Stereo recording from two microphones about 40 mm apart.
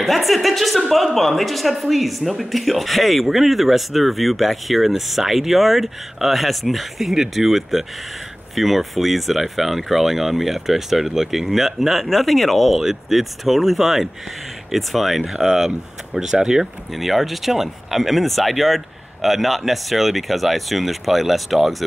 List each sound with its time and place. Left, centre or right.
0.0 s a woman's voice: centre
16.9 s a woman's voice: centre